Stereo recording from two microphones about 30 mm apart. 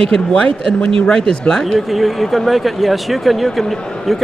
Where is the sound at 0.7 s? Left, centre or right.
Left.